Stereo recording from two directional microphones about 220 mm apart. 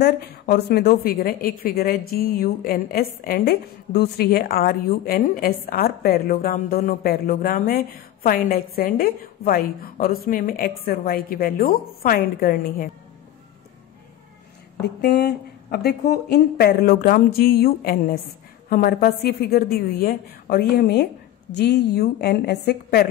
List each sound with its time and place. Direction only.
0.0 s a woman's voice: 45° left (ahead or behind)
14.8 s a woman's voice: 45° left (ahead or behind)